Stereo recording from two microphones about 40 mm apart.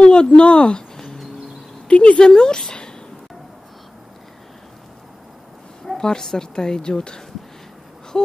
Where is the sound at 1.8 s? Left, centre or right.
Left.